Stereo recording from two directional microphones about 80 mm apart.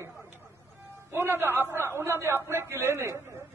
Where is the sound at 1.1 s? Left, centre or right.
Right.